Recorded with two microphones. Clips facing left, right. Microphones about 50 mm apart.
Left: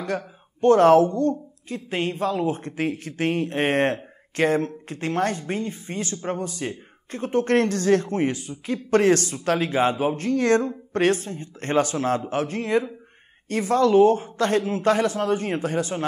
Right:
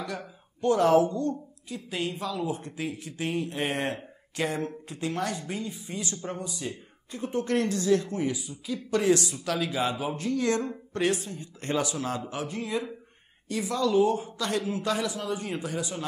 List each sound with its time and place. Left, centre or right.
0.6 s speech: left